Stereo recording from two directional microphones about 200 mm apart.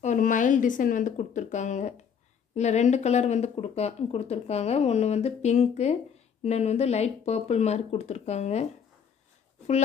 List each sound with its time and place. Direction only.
0.0 s speech: 40° left (ahead or behind)